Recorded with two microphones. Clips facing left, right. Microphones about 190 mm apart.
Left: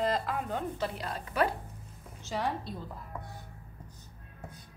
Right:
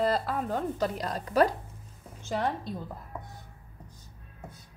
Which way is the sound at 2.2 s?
50° right (ahead or behind).